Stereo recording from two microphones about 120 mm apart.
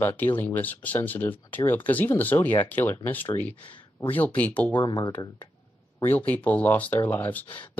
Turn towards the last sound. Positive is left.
turn(degrees=15)  # may be behind; listen again after turning